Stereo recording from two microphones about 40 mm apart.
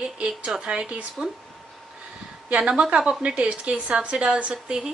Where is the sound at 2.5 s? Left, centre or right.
Right.